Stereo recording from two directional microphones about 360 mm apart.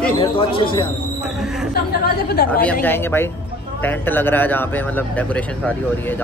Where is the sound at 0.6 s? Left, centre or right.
Centre.